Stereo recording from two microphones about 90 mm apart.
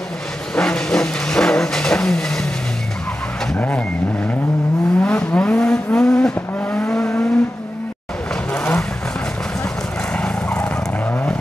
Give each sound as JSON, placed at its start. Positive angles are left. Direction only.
{"t": 0.6, "sound": "vehicle", "side_deg": 10}
{"t": 3.5, "sound": "vehicle", "side_deg": 15}
{"t": 5.0, "sound": "vehicle", "side_deg": 10}
{"t": 8.5, "sound": "vehicle", "side_deg": 15}
{"t": 10.1, "sound": "vehicle", "side_deg": 15}